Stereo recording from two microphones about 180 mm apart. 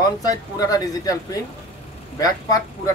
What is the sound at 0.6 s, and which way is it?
A man's voice, 20° left (ahead or behind).